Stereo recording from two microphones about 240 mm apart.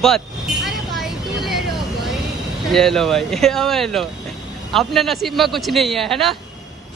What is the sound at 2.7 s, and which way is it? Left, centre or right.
Speech, centre.